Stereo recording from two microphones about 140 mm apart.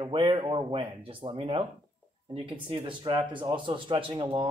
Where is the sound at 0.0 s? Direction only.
35° right (ahead or behind).